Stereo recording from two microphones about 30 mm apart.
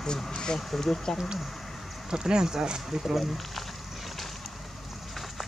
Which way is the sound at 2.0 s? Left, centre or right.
Right.